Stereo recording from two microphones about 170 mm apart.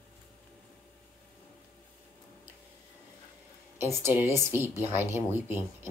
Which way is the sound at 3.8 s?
15° right (ahead or behind).